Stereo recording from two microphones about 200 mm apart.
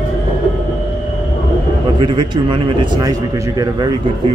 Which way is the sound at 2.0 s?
25° right (ahead or behind).